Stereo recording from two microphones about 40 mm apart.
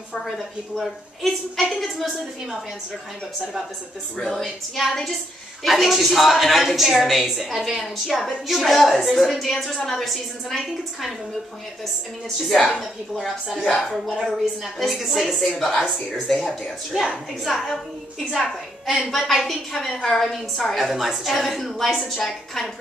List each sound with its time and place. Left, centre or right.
0.7 s a woman's voice: centre
4.2 s a woman's voice: centre
13.2 s a woman's voice: centre
14.2 s a woman's voice: centre
15.5 s a woman's voice: centre
16.9 s a woman's voice: centre